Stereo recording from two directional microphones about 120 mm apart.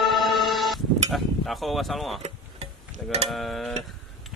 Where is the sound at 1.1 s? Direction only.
Centre (ahead or behind).